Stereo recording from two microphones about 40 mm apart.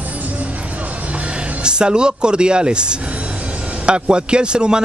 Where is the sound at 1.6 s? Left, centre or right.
Right.